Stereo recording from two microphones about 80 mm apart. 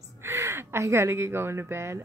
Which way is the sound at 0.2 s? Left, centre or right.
Right.